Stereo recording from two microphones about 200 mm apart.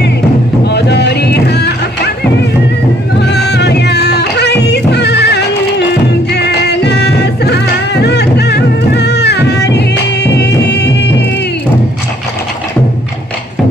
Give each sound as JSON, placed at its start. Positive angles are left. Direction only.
{"t": 0.7, "sound": "music", "side_deg": 55}
{"t": 3.2, "sound": "music", "side_deg": 55}